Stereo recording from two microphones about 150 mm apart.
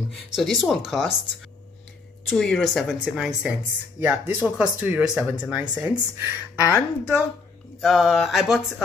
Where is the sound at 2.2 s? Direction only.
Centre (ahead or behind).